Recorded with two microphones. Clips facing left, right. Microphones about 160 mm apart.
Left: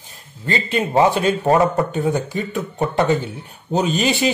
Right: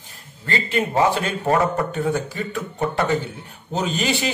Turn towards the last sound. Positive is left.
turn(degrees=20)  # may be behind; listen again after turning